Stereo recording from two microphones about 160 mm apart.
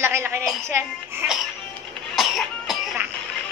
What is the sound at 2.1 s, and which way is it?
Cough, centre (ahead or behind).